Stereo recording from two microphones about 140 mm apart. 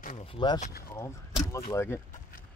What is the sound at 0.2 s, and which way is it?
Speech, 35° left (ahead or behind).